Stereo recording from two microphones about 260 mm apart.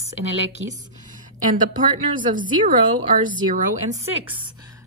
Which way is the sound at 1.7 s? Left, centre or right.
Right.